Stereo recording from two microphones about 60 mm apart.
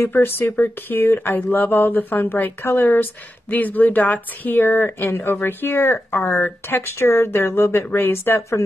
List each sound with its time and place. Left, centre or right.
0.0 s speech: left